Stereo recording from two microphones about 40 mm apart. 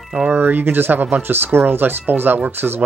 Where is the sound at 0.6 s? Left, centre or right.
Right.